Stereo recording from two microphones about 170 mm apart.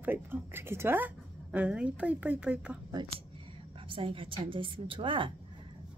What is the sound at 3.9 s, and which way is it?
A woman's voice, 30° right (ahead or behind).